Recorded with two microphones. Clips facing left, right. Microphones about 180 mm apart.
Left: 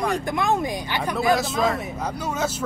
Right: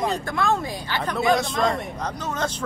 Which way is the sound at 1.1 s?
5° left (ahead or behind).